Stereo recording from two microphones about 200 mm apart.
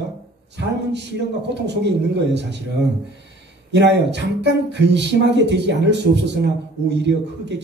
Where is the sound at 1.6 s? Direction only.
60° right (ahead or behind).